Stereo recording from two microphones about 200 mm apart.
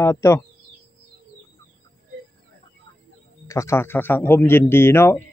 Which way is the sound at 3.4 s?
15° left (ahead or behind).